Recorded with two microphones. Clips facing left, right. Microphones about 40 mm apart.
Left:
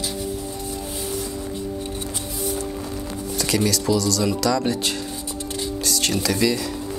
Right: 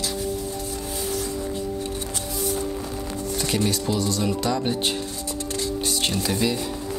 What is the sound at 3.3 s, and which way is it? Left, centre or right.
Speech, left.